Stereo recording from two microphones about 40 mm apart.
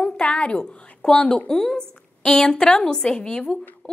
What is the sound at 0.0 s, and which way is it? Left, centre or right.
Speech, left.